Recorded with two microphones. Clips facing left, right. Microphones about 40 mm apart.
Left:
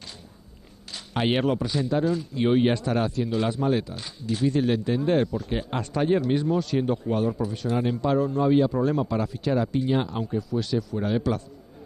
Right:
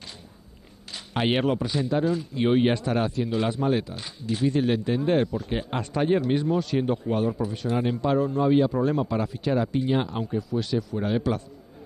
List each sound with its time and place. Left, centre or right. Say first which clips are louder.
0.8 s a man's voice: even; right